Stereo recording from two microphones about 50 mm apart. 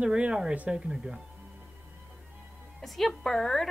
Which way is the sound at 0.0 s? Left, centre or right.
Centre.